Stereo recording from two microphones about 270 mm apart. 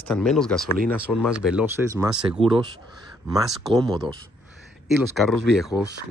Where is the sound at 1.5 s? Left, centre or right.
Centre.